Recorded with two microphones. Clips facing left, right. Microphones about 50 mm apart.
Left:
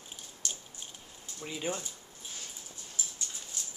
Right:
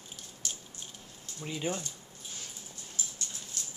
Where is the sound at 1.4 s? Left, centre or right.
Centre.